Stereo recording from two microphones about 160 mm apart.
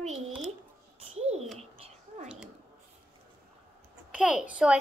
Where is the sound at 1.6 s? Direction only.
40° right (ahead or behind).